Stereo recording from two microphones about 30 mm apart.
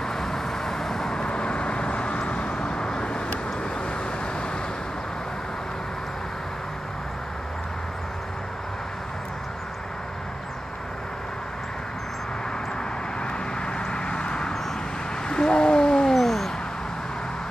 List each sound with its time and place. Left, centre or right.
0.1 s vehicle: centre
1.2 s vehicle: left
2.5 s vehicle: left
13.2 s vehicle: left
15.2 s a sound: left
16.1 s cat: centre